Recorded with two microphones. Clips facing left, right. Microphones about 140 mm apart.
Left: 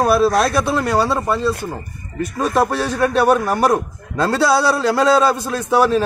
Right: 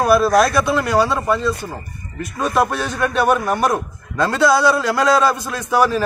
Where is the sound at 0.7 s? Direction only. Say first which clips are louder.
Even; 35° left (ahead or behind).